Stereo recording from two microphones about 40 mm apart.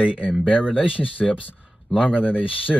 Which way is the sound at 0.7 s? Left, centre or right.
Left.